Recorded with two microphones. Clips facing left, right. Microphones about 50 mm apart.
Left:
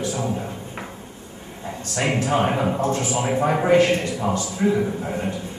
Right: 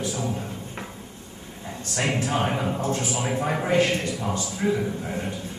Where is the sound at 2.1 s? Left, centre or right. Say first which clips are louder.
Left 7 dB; left.